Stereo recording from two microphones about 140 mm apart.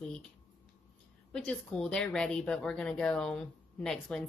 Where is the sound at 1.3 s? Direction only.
5° left (ahead or behind).